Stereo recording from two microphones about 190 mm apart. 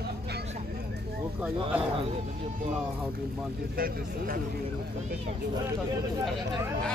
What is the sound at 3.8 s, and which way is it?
Speech, 50° right (ahead or behind).